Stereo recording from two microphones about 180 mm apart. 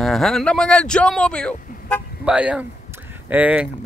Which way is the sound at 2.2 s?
5° right (ahead or behind).